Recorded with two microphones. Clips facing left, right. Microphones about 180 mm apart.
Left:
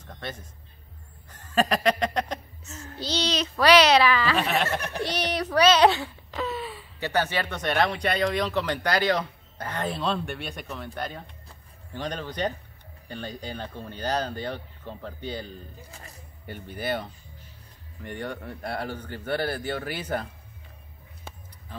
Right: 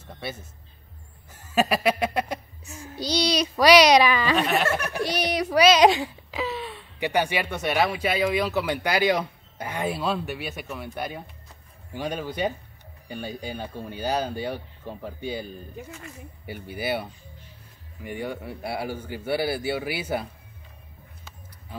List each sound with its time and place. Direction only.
0.0 s music: 10° right (ahead or behind)
1.3 s speech: 10° right (ahead or behind)
4.4 s speech: centre (ahead or behind)
4.8 s speech: 10° right (ahead or behind)
6.4 s a sound: centre (ahead or behind)
7.0 s speech: 15° right (ahead or behind)
15.9 s speech: 35° left (ahead or behind)
16.4 s speech: 10° right (ahead or behind)